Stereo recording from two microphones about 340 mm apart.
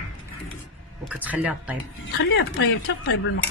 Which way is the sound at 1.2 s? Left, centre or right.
Centre.